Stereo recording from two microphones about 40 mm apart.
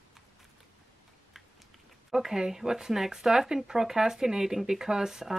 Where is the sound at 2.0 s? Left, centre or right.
Centre.